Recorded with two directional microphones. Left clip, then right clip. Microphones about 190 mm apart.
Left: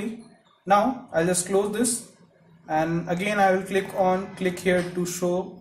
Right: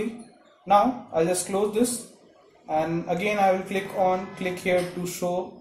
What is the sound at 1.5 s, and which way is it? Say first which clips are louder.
Speech: left 3 dB; 15° left (ahead or behind).